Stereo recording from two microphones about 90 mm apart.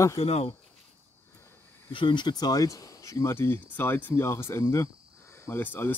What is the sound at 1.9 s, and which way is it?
Speech, 65° left (ahead or behind).